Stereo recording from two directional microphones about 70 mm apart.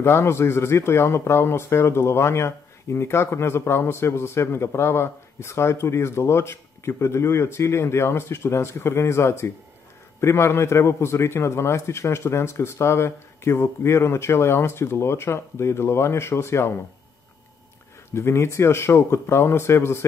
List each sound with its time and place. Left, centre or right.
0.0 s speech: left
18.1 s speech: left